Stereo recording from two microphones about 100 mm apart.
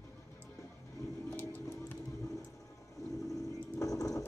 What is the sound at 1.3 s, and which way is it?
Music, 20° left (ahead or behind).